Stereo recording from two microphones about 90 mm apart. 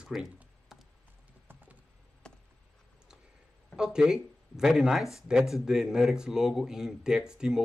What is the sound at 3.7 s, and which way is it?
Speech, 5° right (ahead or behind).